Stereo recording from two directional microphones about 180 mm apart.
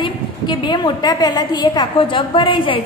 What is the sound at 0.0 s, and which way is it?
A woman's voice, 25° left (ahead or behind).